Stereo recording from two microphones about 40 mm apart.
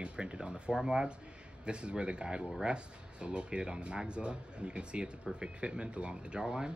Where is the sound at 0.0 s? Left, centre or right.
Right.